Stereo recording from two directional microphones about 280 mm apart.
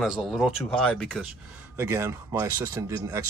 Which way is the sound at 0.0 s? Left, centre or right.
Centre.